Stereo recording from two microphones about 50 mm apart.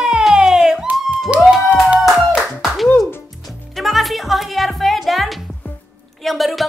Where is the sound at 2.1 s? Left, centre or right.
Centre.